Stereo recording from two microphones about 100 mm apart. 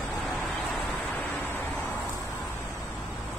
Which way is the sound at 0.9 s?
15° left (ahead or behind).